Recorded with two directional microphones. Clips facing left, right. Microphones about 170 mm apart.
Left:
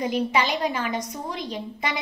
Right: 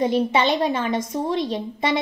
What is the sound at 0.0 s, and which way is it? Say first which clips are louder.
A woman's voice: right 4 dB; 25° right (ahead or behind).